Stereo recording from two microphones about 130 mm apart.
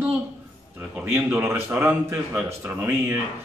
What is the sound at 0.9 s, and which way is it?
A man's voice, 20° right (ahead or behind).